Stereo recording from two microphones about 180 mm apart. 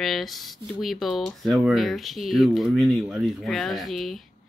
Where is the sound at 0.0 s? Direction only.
Centre (ahead or behind).